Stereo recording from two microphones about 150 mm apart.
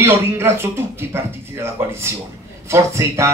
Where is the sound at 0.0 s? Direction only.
15° right (ahead or behind).